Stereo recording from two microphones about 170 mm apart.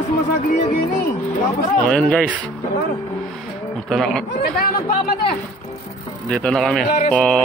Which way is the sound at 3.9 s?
Centre (ahead or behind).